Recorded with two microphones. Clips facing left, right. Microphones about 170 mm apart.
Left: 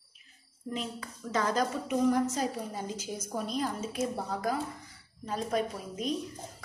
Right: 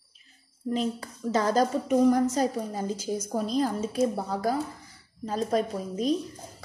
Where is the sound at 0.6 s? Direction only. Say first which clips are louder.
Right 8 dB; 35° right (ahead or behind).